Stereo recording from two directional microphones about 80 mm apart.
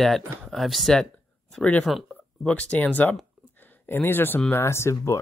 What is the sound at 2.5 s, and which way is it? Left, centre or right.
Speech, centre.